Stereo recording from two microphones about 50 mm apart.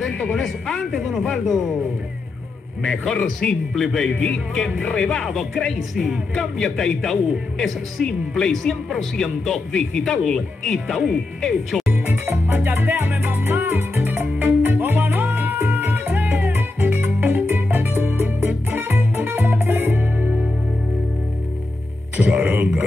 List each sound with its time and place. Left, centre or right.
0.0 s speech: centre
2.8 s a man's voice: centre
3.2 s a man's voice: centre
5.2 s a man's voice: centre
10.9 s speech: centre
12.4 s music: right
18.1 s music: right
22.1 s music: right
22.6 s a sound: right